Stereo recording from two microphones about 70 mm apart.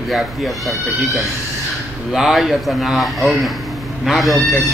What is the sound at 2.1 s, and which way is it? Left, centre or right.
Speech, centre.